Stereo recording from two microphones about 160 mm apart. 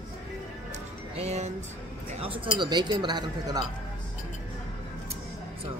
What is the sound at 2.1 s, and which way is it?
Speech, 40° right (ahead or behind).